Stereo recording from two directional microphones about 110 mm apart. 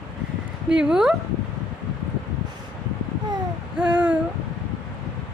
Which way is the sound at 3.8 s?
10° right (ahead or behind).